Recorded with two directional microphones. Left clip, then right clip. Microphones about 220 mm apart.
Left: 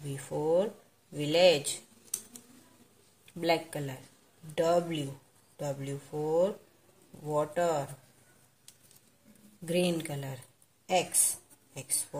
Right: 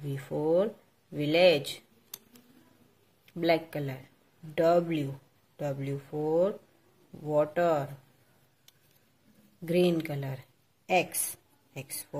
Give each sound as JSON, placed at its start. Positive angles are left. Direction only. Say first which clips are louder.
{"t": 0.1, "sound": "speech", "louder": "right 1 dB", "side_deg": -20}
{"t": 3.3, "sound": "speech", "louder": "right 2 dB", "side_deg": -20}
{"t": 9.7, "sound": "speech", "louder": "right 3 dB", "side_deg": -20}
{"t": 11.7, "sound": "speech", "louder": "left 2 dB", "side_deg": -20}